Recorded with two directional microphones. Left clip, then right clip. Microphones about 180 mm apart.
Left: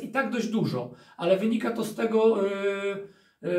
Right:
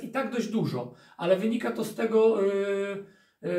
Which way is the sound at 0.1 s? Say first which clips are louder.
Left 2 dB; 15° left (ahead or behind).